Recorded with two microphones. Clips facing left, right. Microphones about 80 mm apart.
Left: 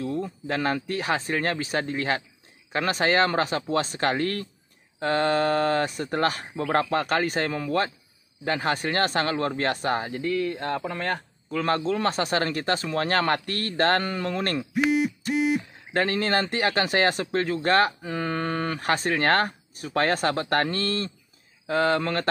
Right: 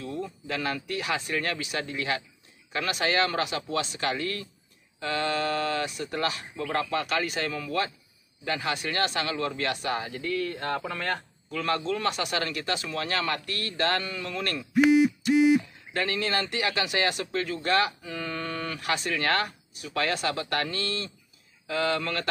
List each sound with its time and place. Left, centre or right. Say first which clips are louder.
0.0 s speech: left 5 dB; left